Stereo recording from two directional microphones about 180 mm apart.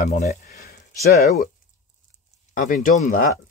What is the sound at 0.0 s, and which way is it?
Speech, 40° left (ahead or behind).